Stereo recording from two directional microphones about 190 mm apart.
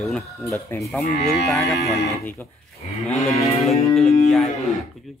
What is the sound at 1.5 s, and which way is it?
Speech, centre (ahead or behind).